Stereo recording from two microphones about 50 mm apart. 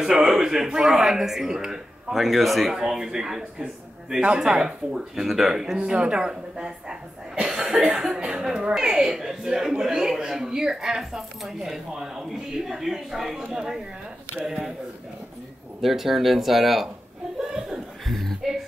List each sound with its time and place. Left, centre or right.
0.0 s a woman's voice: centre
7.4 s cough: centre
7.8 s a woman's voice: centre
15.8 s speech: centre
17.4 s chuckle: centre
18.0 s a sound: centre